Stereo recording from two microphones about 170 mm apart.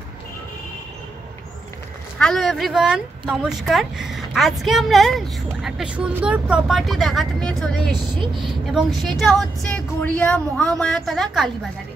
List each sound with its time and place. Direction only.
2.1 s speech: 5° left (ahead or behind)
7.9 s a woman's voice: 30° right (ahead or behind)
8.4 s speech: centre (ahead or behind)